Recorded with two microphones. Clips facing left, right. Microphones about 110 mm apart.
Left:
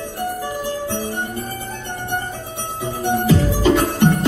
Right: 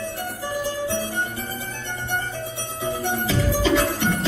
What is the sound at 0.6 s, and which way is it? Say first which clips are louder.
Music: even; 50° left (ahead or behind).